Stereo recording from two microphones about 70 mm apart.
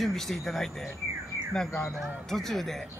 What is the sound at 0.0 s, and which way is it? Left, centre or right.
Speech, centre.